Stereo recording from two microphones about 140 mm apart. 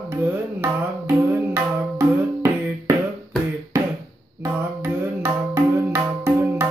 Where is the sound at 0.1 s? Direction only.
15° right (ahead or behind).